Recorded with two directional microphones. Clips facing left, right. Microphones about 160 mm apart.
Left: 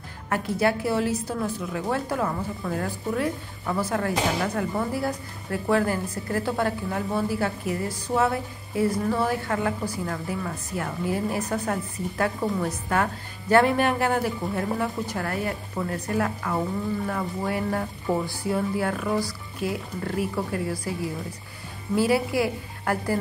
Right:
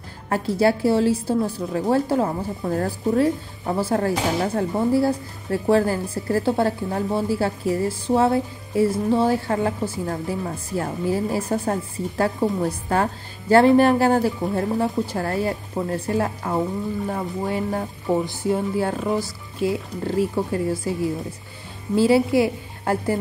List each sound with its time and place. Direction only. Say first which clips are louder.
0.3 s a woman's voice: right 4 dB; 30° right (ahead or behind)